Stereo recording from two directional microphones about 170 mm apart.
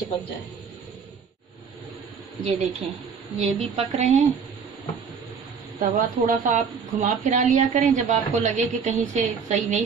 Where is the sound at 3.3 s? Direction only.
35° right (ahead or behind).